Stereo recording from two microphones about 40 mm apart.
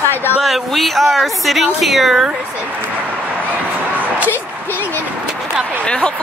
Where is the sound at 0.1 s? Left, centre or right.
Left.